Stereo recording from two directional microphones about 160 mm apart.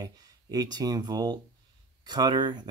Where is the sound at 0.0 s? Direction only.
25° right (ahead or behind).